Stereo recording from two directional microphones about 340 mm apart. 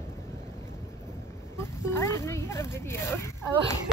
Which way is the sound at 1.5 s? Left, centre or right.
Centre.